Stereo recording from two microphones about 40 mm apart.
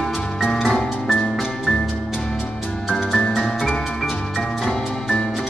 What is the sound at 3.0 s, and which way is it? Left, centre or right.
Music, centre.